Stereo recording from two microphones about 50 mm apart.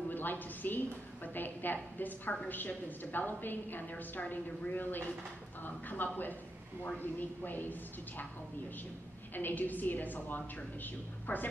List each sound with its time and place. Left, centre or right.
0.1 s a woman's voice: left
9.3 s a woman's voice: left